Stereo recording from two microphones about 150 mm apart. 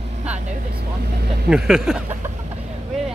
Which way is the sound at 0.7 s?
90° right.